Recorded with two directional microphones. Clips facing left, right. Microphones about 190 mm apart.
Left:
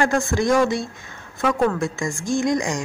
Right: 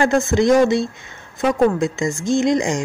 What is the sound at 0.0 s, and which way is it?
Speech, 25° right (ahead or behind).